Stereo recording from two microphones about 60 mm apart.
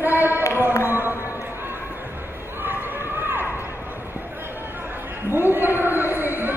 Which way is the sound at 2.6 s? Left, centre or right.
Right.